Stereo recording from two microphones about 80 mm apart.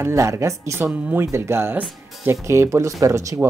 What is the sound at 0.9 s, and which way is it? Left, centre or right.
Speech, centre.